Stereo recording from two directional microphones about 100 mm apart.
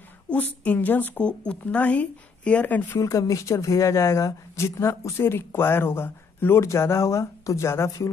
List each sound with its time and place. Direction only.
0.3 s a woman's voice: 15° left (ahead or behind)
3.0 s speech: 30° left (ahead or behind)